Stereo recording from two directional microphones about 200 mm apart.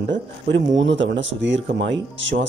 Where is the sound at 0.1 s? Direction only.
65° right (ahead or behind).